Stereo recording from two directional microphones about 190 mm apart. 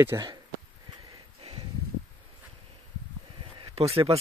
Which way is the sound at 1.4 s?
30° right (ahead or behind).